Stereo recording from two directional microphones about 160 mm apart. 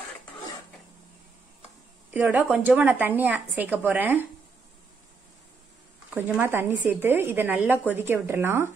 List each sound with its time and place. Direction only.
2.0 s a woman's voice: 10° right (ahead or behind)
6.1 s a woman's voice: 10° right (ahead or behind)